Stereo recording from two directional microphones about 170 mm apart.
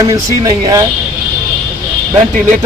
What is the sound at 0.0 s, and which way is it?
Speech, 20° right (ahead or behind).